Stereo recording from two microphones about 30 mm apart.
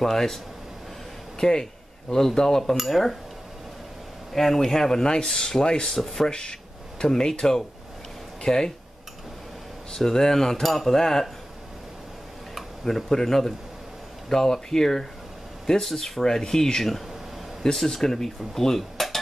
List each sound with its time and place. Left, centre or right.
0.0 s speech: centre
1.4 s a sound: left
2.3 s speech: centre
4.3 s speech: centre; by 5.9 s left
5.9 s speech: centre
6.2 s speech: left
9.9 s speech: centre
12.8 s speech: centre
16.2 s speech: centre